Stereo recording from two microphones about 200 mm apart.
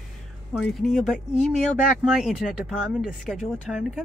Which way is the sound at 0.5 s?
Centre (ahead or behind).